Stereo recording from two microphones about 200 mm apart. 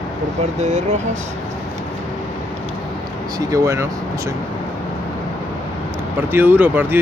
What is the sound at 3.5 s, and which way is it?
Speech, 15° right (ahead or behind).